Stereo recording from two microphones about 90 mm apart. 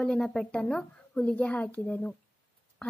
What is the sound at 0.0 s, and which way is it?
Speech, 5° left (ahead or behind).